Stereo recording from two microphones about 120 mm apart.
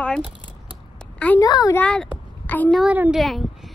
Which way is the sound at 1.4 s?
30° left (ahead or behind).